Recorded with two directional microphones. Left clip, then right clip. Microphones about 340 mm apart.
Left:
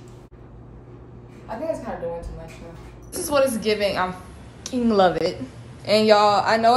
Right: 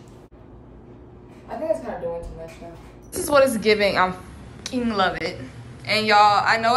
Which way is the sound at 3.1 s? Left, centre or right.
Centre.